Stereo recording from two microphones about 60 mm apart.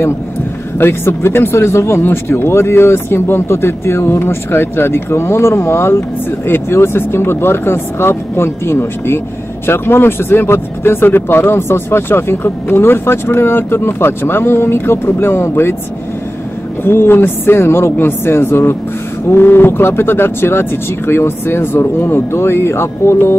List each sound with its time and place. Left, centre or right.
0.7 s speech: left
16.8 s speech: left